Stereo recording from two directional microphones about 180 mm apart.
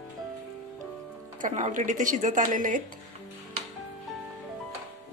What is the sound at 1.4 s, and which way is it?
Speech, 45° right (ahead or behind).